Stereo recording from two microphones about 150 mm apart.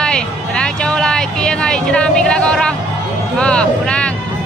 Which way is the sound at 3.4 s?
5° left (ahead or behind).